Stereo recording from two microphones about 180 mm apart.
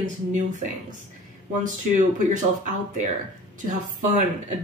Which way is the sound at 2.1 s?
45° right (ahead or behind).